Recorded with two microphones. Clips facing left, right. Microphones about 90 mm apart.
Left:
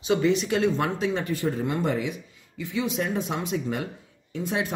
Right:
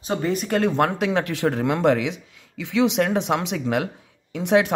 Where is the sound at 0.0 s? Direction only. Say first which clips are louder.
Left 2 dB; 40° right (ahead or behind).